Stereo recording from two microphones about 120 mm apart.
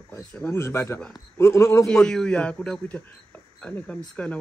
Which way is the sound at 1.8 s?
5° left (ahead or behind).